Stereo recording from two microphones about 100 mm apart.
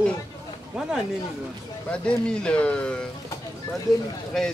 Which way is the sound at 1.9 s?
10° left (ahead or behind).